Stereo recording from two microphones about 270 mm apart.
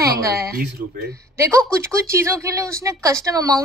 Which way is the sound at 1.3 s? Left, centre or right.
Centre.